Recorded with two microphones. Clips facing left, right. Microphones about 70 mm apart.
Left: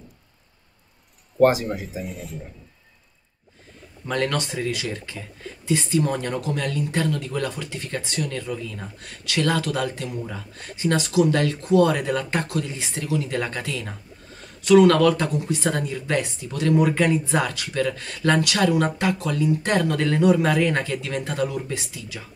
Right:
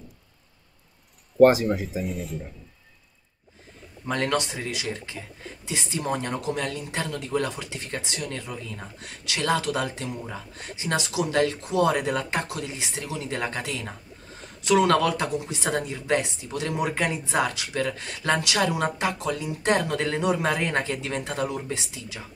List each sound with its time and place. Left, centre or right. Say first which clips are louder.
1.7 s speech: right 3 dB; centre
4.1 s speech: left 1 dB; centre